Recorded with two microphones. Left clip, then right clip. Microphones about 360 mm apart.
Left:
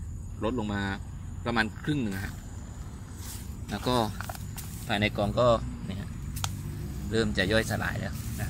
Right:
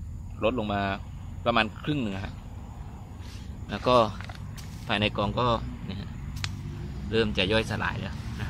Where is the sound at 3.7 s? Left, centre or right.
Centre.